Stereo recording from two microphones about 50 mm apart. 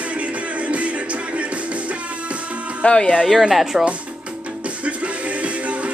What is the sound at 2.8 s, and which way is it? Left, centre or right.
Speech, centre.